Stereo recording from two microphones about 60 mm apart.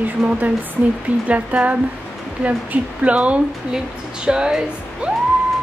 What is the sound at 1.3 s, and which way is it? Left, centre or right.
Speech, right.